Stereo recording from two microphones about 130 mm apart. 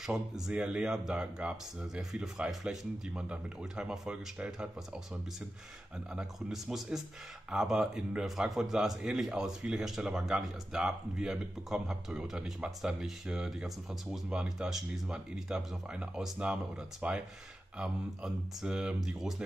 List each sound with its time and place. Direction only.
0.0 s a man's voice: 5° right (ahead or behind)
6.1 s a man's voice: 5° right (ahead or behind)